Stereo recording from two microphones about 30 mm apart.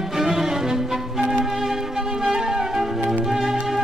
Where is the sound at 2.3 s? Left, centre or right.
Centre.